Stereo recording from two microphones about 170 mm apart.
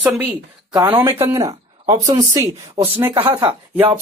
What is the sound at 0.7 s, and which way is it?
Speech, 25° right (ahead or behind).